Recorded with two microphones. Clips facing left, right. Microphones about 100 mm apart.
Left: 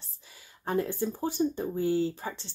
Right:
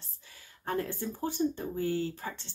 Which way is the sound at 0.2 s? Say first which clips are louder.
Left 2 dB; 15° left (ahead or behind).